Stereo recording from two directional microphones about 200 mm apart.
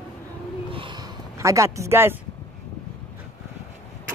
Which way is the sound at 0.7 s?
25° right (ahead or behind).